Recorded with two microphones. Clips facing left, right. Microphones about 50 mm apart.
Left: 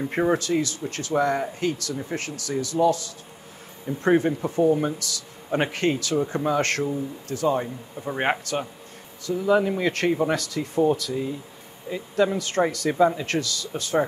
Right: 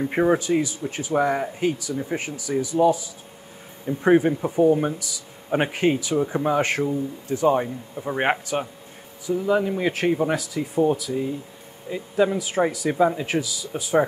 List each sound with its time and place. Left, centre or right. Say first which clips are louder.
0.0 s speech: right 3 dB; centre
7.9 s speech: right 2 dB; centre